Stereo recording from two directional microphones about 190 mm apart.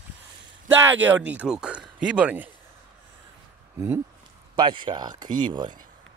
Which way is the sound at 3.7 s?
15° right (ahead or behind).